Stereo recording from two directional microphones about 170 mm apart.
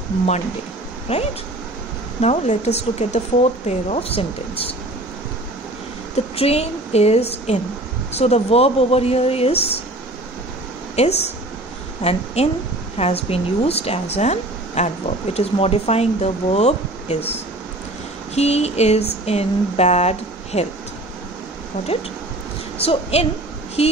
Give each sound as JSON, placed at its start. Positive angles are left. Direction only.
{"t": 1.0, "sound": "speech", "side_deg": 35}
{"t": 6.1, "sound": "speech", "side_deg": 35}
{"t": 11.0, "sound": "a woman's voice", "side_deg": 40}
{"t": 18.3, "sound": "speech", "side_deg": 40}
{"t": 22.8, "sound": "a child's voice", "side_deg": 35}